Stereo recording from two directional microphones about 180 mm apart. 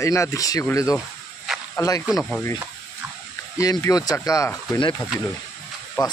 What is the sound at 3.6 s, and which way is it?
Speech, 20° left (ahead or behind).